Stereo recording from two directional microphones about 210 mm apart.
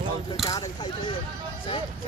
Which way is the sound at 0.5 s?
20° left (ahead or behind).